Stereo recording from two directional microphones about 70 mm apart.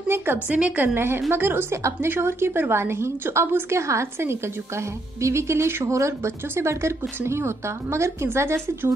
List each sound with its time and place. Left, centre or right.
0.1 s a woman's voice: right
0.5 s a woman's voice: centre
0.9 s a woman's voice: right
1.8 s speech: right
2.0 s a woman's voice: right